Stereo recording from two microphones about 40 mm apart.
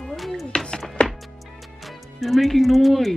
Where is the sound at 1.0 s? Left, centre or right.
Left.